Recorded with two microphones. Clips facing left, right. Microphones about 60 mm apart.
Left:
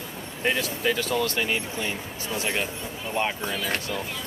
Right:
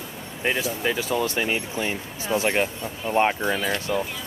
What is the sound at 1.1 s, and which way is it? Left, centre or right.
Speech, right.